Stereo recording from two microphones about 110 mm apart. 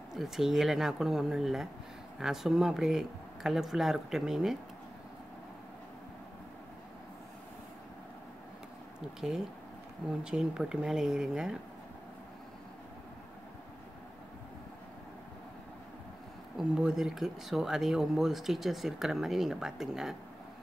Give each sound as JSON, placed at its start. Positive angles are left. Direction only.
{"t": 0.1, "sound": "speech", "side_deg": -5}
{"t": 9.2, "sound": "speech", "side_deg": -10}
{"t": 16.5, "sound": "speech", "side_deg": -5}